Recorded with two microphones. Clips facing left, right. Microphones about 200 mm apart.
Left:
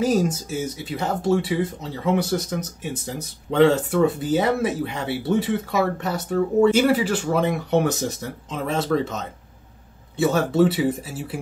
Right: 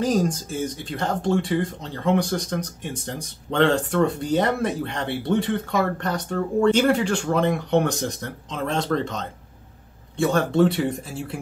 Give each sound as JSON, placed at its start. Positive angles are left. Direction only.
{"t": 0.0, "sound": "speech", "side_deg": 5}